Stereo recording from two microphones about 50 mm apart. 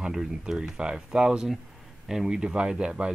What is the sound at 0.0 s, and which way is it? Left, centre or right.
Speech, centre.